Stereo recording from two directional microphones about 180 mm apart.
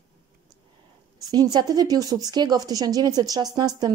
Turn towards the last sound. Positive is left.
turn(degrees=-20)  # may be behind; listen again after turning